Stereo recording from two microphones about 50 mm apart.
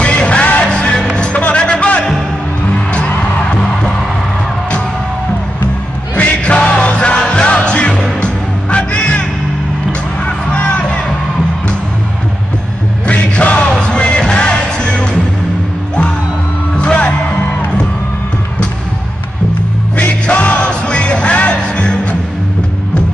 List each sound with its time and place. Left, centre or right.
0.0 s music: left
6.1 s music: left
10.2 s vehicle: left
13.0 s music: left
16.7 s music: left
20.2 s music: left